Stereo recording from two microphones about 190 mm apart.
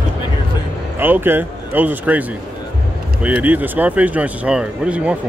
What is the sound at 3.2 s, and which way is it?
Speech, 10° right (ahead or behind).